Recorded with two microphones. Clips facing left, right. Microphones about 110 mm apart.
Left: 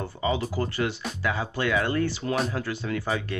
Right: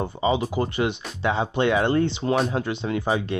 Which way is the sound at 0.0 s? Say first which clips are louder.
Right 4 dB; 20° right (ahead or behind).